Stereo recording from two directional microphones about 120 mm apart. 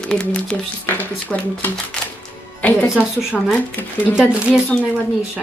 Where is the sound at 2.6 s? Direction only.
10° left (ahead or behind).